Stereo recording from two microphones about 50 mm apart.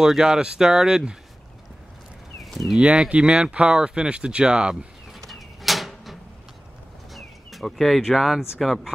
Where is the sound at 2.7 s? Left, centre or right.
Centre.